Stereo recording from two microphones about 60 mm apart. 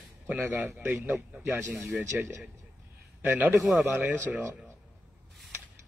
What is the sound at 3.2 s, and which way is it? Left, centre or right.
A man's voice, right.